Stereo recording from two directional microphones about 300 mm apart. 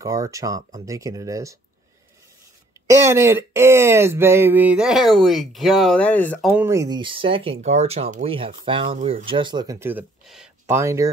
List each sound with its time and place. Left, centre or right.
0.0 s speech: centre
2.9 s speech: centre